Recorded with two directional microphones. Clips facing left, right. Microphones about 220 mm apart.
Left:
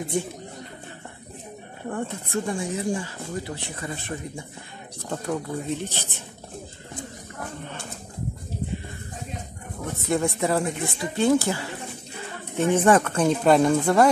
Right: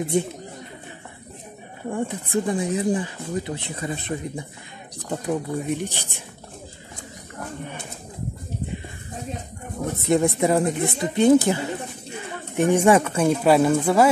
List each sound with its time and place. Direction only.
1.9 s speech: 15° right (ahead or behind)
10.0 s speech: 20° right (ahead or behind)